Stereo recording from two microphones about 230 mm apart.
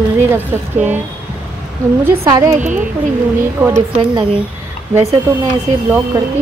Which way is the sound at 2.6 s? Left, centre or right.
Right.